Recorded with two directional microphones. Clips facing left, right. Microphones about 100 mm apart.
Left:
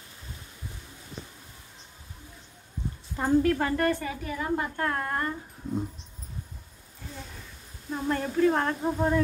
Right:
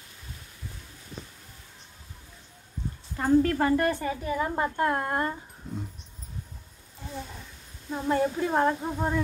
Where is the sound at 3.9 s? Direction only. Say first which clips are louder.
Right 1 dB; 20° right (ahead or behind).